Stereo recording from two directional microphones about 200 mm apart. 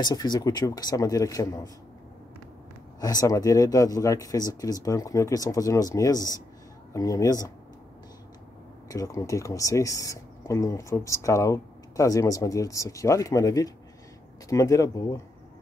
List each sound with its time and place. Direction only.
0.0 s speech: 20° left (ahead or behind)
3.0 s speech: 20° left (ahead or behind)
8.8 s speech: 15° left (ahead or behind)